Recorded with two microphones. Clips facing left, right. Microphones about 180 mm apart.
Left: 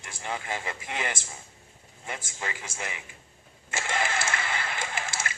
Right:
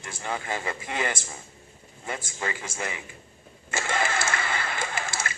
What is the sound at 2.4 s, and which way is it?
Speech, 35° right (ahead or behind).